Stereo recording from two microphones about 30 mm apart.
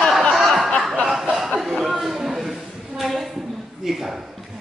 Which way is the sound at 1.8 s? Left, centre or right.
Centre.